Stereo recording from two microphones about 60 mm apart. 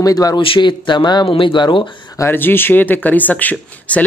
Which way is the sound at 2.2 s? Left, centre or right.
Left.